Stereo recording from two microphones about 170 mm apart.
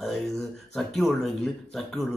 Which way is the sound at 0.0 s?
Centre (ahead or behind).